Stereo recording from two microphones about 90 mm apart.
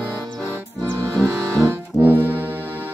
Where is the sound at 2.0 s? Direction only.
25° right (ahead or behind).